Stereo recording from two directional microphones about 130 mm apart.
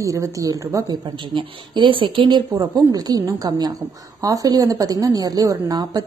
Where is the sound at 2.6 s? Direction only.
30° right (ahead or behind).